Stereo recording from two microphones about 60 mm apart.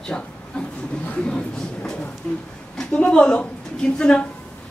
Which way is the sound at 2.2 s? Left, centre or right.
Left.